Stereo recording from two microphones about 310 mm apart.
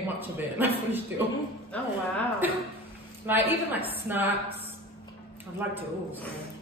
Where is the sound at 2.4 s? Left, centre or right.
Centre.